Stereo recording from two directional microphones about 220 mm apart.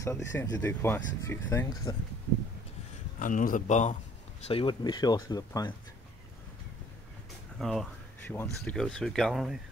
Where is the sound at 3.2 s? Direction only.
35° left (ahead or behind).